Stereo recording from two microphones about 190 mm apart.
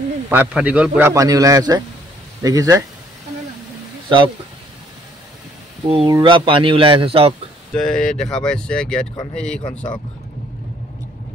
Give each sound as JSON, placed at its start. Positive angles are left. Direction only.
{"t": 0.3, "sound": "a man's voice", "side_deg": -5}
{"t": 5.9, "sound": "speech", "side_deg": -30}
{"t": 7.7, "sound": "speech", "side_deg": 5}